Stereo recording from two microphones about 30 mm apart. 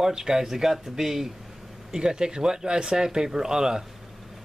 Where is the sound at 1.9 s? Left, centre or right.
Right.